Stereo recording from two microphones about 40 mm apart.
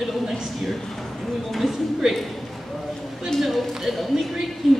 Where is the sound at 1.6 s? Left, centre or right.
Centre.